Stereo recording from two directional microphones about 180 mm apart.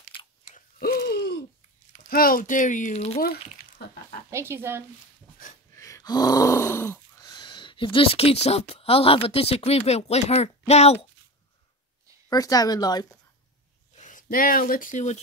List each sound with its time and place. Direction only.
0.5 s chewing: 50° left (ahead or behind); by 1.4 s 65° left (ahead or behind)
1.9 s speech: 55° left (ahead or behind); by 3.2 s 35° left (ahead or behind)
3.2 s speech: 60° left (ahead or behind)
4.3 s speech: 15° right (ahead or behind)
5.4 s a sound: 50° left (ahead or behind)
5.8 s groan: 15° left (ahead or behind)
8.5 s speech: 35° left (ahead or behind)
12.3 s a woman's voice: 20° left (ahead or behind)
13.9 s speech: 45° left (ahead or behind)